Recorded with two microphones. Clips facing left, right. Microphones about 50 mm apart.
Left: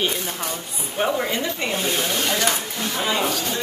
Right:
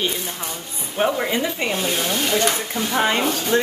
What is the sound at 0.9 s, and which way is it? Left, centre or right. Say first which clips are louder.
Speech: right 2 dB; centre.